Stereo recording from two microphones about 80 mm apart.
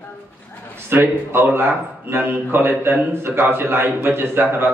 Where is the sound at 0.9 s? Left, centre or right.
Right.